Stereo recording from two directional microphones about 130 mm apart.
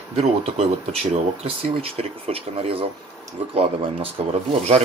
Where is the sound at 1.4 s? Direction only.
50° right (ahead or behind).